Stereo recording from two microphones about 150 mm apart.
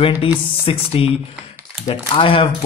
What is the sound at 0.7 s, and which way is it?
Speech, 40° left (ahead or behind).